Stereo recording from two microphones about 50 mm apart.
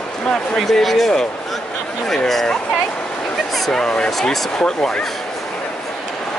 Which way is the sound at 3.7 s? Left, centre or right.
Centre.